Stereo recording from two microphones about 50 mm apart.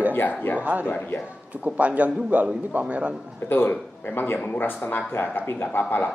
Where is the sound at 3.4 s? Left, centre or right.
Left.